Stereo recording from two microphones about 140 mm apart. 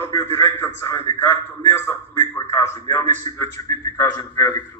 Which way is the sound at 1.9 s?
20° left (ahead or behind).